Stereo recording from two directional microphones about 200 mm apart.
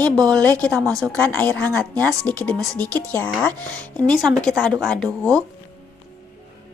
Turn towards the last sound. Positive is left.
turn(degrees=5)  # may be behind; listen again after turning